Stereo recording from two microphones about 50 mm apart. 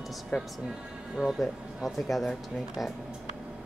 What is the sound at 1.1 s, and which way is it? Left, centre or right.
Speech, centre.